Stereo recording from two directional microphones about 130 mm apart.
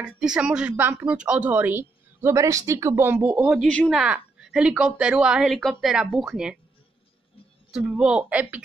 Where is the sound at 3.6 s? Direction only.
5° left (ahead or behind).